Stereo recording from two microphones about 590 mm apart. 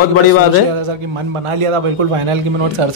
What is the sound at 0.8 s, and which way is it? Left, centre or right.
A man's voice, right.